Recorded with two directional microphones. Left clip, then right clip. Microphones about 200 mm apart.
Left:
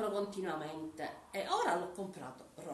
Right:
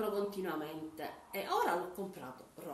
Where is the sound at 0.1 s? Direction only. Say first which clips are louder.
Even; centre (ahead or behind).